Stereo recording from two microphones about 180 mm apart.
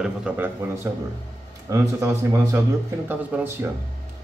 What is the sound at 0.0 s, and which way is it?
Speech, 5° right (ahead or behind).